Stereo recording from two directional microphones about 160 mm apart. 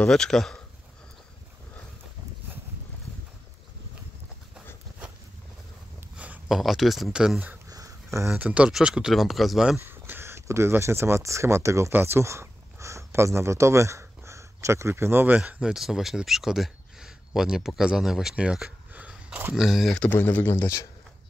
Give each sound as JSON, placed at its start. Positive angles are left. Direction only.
{"t": 0.0, "sound": "speech", "side_deg": 5}
{"t": 6.1, "sound": "a sound", "side_deg": -10}
{"t": 6.6, "sound": "speech", "side_deg": 0}
{"t": 7.7, "sound": "dog", "side_deg": -20}
{"t": 8.3, "sound": "speech", "side_deg": -10}
{"t": 9.8, "sound": "speech", "side_deg": -15}
{"t": 19.5, "sound": "speech", "side_deg": 0}